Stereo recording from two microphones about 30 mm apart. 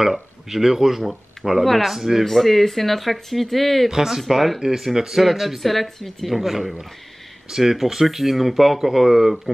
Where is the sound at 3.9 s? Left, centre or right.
Centre.